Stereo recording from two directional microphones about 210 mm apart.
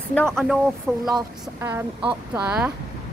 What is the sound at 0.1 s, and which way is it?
Speech, 5° left (ahead or behind).